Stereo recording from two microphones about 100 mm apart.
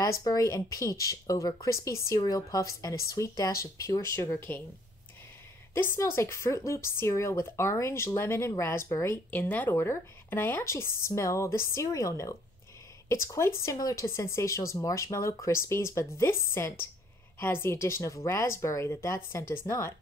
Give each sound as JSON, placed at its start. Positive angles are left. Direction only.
{"t": 0.0, "sound": "speech", "side_deg": 35}
{"t": 2.1, "sound": "a woman's voice", "side_deg": 40}
{"t": 5.8, "sound": "a woman's voice", "side_deg": 25}
{"t": 9.1, "sound": "a woman's voice", "side_deg": 15}
{"t": 14.0, "sound": "a woman's voice", "side_deg": 25}